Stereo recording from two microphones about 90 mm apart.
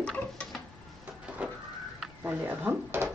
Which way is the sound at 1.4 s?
15° right (ahead or behind).